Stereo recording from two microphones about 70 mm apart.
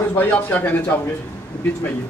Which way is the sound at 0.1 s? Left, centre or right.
Left.